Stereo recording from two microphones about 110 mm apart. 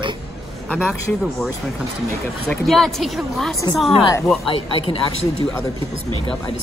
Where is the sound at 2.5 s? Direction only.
5° left (ahead or behind).